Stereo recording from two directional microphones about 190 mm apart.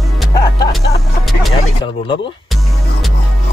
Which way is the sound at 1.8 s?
25° left (ahead or behind).